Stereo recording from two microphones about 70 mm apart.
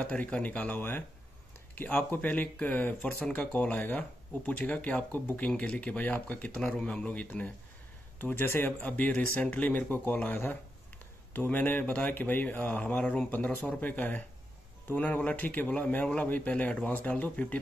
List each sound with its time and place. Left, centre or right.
0.0 s a man's voice: centre
8.2 s a man's voice: left